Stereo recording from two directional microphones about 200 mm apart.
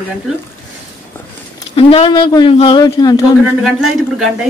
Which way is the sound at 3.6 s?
Centre (ahead or behind).